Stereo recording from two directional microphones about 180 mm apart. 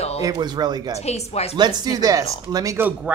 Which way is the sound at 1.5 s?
20° right (ahead or behind).